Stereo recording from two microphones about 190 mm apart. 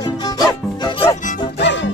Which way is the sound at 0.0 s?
20° left (ahead or behind).